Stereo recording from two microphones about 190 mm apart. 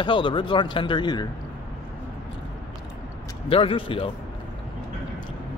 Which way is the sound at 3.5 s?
30° left (ahead or behind).